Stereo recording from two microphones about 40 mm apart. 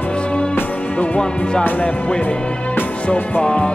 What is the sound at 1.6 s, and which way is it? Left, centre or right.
Speech, left.